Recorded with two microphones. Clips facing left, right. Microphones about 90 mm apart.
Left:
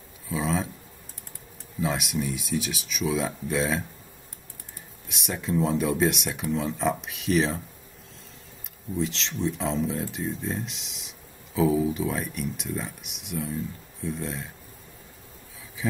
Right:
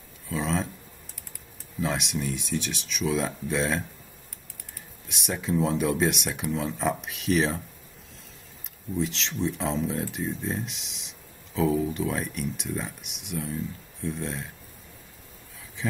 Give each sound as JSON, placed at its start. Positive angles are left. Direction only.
{"t": 0.3, "sound": "a sound", "side_deg": 0}
{"t": 1.8, "sound": "speech", "side_deg": 0}
{"t": 5.0, "sound": "speech", "side_deg": 0}
{"t": 8.9, "sound": "speech", "side_deg": 0}
{"t": 15.8, "sound": "speech", "side_deg": 5}